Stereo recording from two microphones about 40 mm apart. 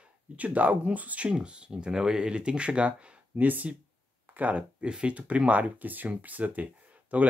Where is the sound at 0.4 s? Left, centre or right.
Right.